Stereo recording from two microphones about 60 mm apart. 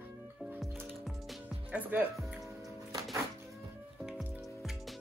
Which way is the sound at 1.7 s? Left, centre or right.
Right.